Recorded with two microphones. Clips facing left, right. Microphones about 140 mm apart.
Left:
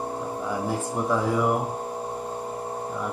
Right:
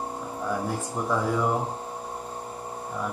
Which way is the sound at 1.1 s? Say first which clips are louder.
Left 2 dB; 5° left (ahead or behind).